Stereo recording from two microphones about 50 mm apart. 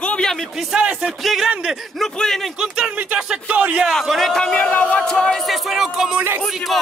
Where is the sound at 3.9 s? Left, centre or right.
Centre.